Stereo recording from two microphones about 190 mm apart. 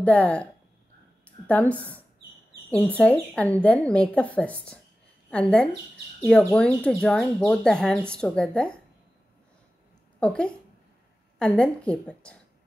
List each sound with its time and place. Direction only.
0.0 s a woman's voice: 5° left (ahead or behind)
10.2 s speech: 5° left (ahead or behind)